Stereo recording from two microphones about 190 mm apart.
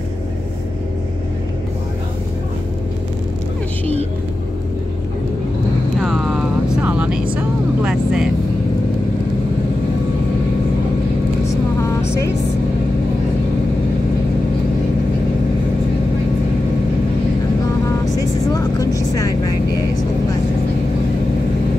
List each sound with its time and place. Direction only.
5.9 s vehicle: centre (ahead or behind)
11.4 s vehicle: 15° left (ahead or behind)
18.0 s vehicle: 20° left (ahead or behind)